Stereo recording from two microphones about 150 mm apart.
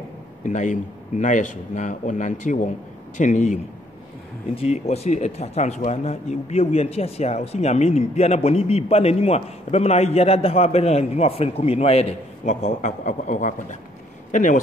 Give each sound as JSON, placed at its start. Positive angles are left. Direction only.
{"t": 0.4, "sound": "a man's voice", "side_deg": 55}
{"t": 4.6, "sound": "speech", "side_deg": 45}